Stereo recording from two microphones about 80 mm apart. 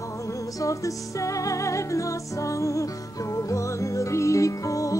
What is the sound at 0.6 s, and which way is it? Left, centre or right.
Music, left.